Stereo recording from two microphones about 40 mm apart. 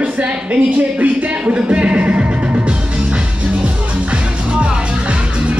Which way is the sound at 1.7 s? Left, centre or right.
Right.